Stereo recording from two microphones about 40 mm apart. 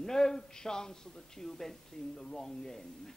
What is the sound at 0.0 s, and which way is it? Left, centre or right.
Speech, centre.